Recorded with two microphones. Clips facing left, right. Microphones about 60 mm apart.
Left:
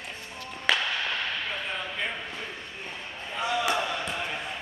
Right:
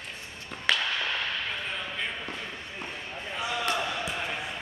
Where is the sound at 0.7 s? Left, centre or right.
Centre.